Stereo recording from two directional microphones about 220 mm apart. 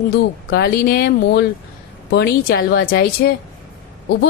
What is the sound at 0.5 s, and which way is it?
Speech, 45° left (ahead or behind).